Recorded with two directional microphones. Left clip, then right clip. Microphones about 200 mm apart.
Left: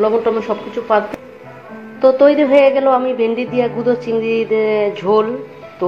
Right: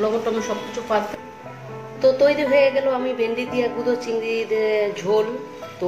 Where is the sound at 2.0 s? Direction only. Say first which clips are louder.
Left 6 dB; 5° left (ahead or behind).